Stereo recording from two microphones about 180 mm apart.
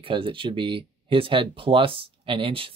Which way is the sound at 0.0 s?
30° right (ahead or behind).